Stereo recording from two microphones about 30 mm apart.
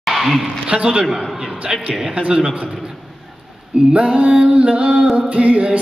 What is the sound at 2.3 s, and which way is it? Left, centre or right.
Speech, right.